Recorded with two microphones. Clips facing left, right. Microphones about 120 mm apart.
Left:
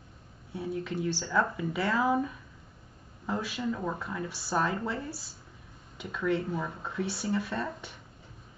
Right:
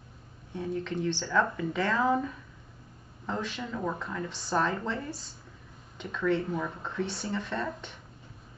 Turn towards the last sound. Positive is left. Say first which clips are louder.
# right 1 dB
turn(degrees=10)  # may be behind; listen again after turning